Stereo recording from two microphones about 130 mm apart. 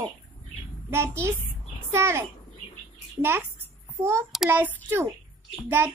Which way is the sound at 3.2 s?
20° right (ahead or behind).